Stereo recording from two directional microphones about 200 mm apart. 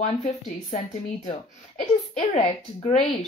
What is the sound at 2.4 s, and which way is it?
Speech, 30° left (ahead or behind).